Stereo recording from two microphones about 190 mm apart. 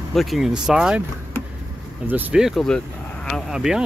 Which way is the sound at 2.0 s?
10° right (ahead or behind).